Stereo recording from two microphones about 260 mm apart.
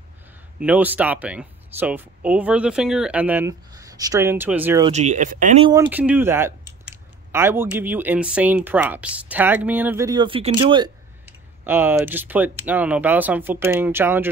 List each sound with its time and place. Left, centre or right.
0.7 s speech: centre
4.8 s speech: right
5.7 s speech: centre
11.6 s speech: centre